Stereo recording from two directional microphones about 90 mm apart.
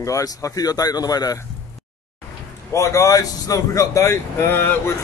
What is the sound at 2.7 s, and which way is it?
Speech, 35° left (ahead or behind).